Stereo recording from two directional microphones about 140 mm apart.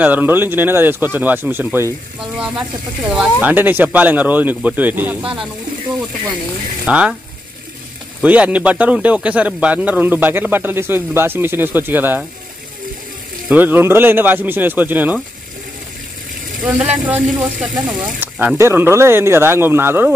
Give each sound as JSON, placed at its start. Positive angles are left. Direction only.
{"t": 0.0, "sound": "a man's voice", "side_deg": -10}
{"t": 3.4, "sound": "a man's voice", "side_deg": -15}
{"t": 6.9, "sound": "a man's voice", "side_deg": -5}
{"t": 8.2, "sound": "a man's voice", "side_deg": -10}
{"t": 13.5, "sound": "a man's voice", "side_deg": -15}
{"t": 16.6, "sound": "speech", "side_deg": -5}
{"t": 18.6, "sound": "a man's voice", "side_deg": -15}